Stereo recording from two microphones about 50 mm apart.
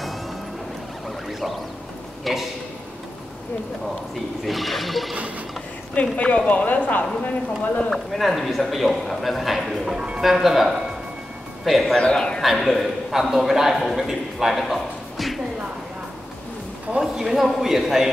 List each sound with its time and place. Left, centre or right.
2.3 s a man's voice: centre
4.5 s a man's voice: centre
5.9 s speech: left
7.9 s a man's voice: centre
9.9 s a man's voice: right
10.2 s a man's voice: centre
12.0 s a man's voice: centre
12.4 s a man's voice: centre
14.6 s music: centre
17.0 s a man's voice: centre